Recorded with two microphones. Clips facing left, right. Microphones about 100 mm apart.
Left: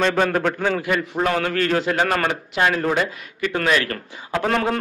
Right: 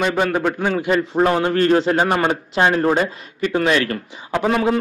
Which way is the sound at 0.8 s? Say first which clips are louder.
Right 5 dB; 30° right (ahead or behind).